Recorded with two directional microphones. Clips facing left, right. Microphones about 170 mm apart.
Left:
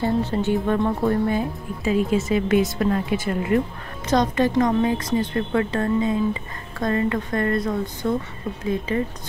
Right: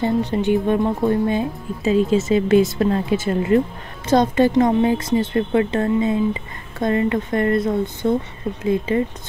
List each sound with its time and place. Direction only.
0.0 s speech: 15° right (ahead or behind)